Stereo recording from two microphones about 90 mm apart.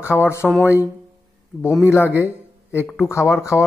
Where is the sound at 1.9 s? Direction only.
30° left (ahead or behind).